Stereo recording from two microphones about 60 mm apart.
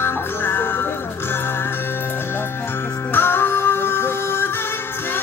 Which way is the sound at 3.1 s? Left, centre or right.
Left.